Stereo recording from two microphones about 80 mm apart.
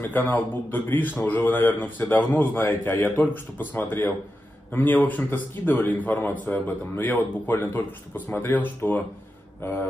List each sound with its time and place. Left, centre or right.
0.0 s a man's voice: left